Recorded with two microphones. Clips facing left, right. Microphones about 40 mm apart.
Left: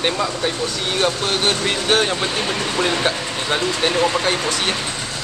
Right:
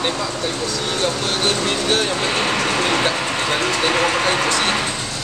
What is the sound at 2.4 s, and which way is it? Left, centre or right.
Speech, right.